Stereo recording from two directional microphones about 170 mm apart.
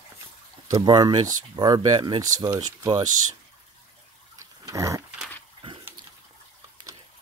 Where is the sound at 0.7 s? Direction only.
25° right (ahead or behind).